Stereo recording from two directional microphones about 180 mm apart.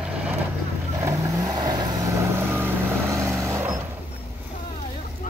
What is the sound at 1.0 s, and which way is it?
Vehicle, 15° right (ahead or behind).